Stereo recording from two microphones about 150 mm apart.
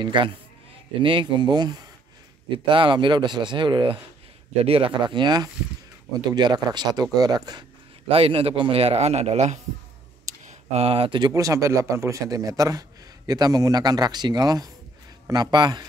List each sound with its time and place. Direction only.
0.0 s a man's voice: 30° right (ahead or behind)
8.1 s a man's voice: 40° right (ahead or behind)